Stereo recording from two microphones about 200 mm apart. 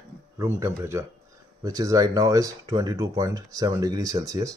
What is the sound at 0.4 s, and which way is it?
Speech, 15° right (ahead or behind).